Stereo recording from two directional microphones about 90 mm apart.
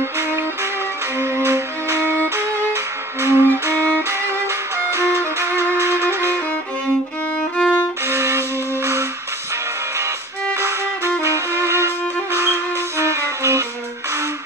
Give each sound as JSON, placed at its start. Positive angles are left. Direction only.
{"t": 0.2, "sound": "music", "side_deg": -30}
{"t": 1.1, "sound": "violin", "side_deg": -30}
{"t": 7.3, "sound": "music", "side_deg": 10}
{"t": 8.0, "sound": "music", "side_deg": -30}
{"t": 10.5, "sound": "violin", "side_deg": -30}
{"t": 11.2, "sound": "music", "side_deg": -30}